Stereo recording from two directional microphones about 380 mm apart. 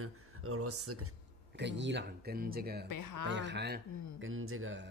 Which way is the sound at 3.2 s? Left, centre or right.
Right.